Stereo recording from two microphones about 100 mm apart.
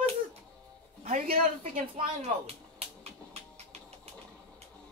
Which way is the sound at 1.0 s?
90° right.